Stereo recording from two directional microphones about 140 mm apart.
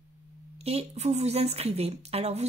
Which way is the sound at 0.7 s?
50° right (ahead or behind).